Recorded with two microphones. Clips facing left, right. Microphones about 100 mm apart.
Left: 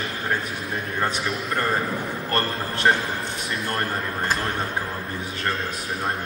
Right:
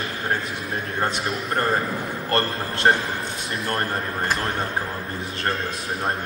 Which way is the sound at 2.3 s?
30° right (ahead or behind).